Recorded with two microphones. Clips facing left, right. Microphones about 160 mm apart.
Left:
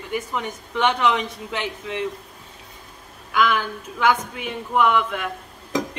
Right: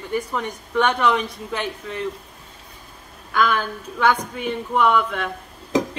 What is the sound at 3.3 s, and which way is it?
A woman's voice, 10° left (ahead or behind).